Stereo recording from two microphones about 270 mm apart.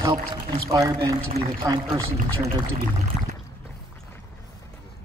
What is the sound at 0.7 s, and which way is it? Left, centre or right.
Speech, centre.